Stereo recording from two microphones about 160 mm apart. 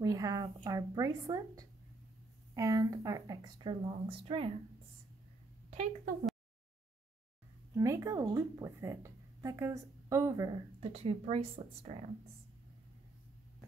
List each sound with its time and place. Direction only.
0.0 s a woman's voice: 20° right (ahead or behind)
5.7 s a woman's voice: 45° right (ahead or behind)
7.7 s a woman's voice: 20° right (ahead or behind)
10.8 s speech: 40° right (ahead or behind)